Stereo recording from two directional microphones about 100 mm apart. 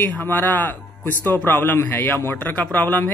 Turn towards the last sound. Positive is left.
turn(degrees=15)  # may be behind; listen again after turning